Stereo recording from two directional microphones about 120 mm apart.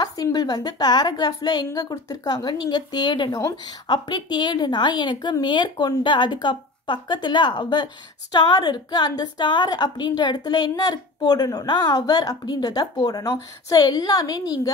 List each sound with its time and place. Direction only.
0.0 s a woman's voice: 35° left (ahead or behind)